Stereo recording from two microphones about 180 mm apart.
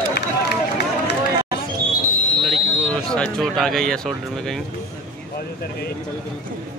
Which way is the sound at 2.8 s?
5° left (ahead or behind).